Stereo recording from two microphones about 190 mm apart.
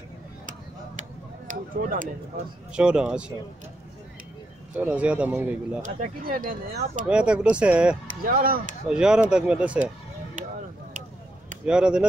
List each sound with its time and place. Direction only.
1.5 s speech: 45° right (ahead or behind)
2.7 s speech: 5° right (ahead or behind)
4.7 s speech: 5° right (ahead or behind)
5.8 s speech: 45° right (ahead or behind)
7.1 s speech: 5° right (ahead or behind)
8.2 s speech: 50° right (ahead or behind)
8.8 s speech: 5° right (ahead or behind)
11.6 s speech: 5° right (ahead or behind)